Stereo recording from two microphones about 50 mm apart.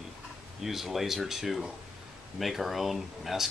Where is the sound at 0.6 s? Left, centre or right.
Centre.